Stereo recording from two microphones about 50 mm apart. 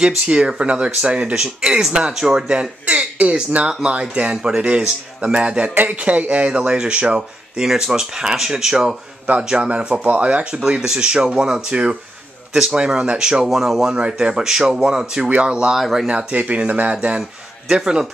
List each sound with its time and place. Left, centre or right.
0.0 s speech: centre
2.8 s speech: right
10.6 s speech: centre
13.5 s speech: centre
13.9 s speech: centre
15.8 s speech: centre
16.1 s speech: right
17.2 s a man's voice: centre